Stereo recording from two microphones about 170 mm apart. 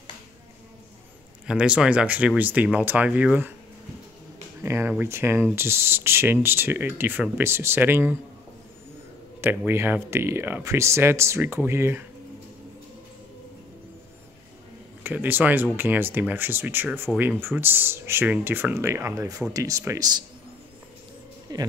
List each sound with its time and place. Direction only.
1.5 s speech: 5° right (ahead or behind)
4.6 s speech: 10° right (ahead or behind)
9.7 s speech: 10° right (ahead or behind)
15.0 s speech: 10° right (ahead or behind)
21.5 s music: 25° right (ahead or behind)